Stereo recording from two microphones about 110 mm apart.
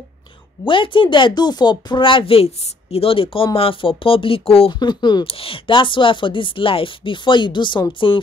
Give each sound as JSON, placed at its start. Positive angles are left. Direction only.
{"t": 0.7, "sound": "speech", "side_deg": 50}
{"t": 4.7, "sound": "speech", "side_deg": 40}
{"t": 5.2, "sound": "speech", "side_deg": 60}